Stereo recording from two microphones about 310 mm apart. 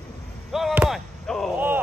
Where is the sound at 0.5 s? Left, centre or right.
Centre.